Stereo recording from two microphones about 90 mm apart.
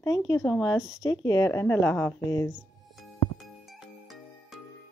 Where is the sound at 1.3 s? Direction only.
35° left (ahead or behind).